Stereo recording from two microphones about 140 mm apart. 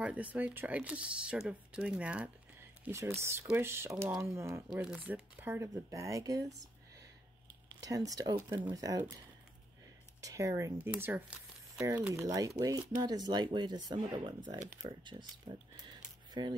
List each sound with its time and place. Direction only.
0.0 s speech: 10° right (ahead or behind)
7.8 s speech: 25° right (ahead or behind)
10.2 s speech: 25° right (ahead or behind)